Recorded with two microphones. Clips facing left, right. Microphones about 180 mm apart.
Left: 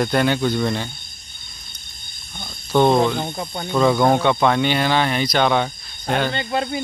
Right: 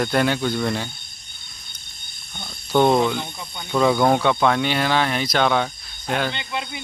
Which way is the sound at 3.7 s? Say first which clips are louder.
Left 1 dB; centre (ahead or behind).